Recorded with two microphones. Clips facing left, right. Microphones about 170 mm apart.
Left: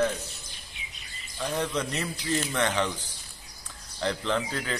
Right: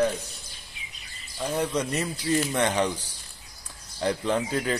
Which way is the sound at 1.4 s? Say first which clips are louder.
Right 2 dB; 10° right (ahead or behind).